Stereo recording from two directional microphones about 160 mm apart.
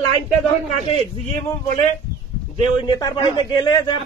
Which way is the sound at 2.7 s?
30° left (ahead or behind).